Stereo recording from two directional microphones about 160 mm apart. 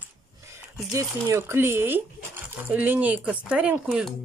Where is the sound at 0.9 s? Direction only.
15° right (ahead or behind).